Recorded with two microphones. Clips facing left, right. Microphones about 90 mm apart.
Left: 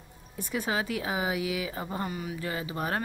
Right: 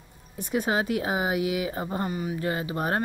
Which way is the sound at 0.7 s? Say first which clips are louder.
Right 4 dB; 40° right (ahead or behind).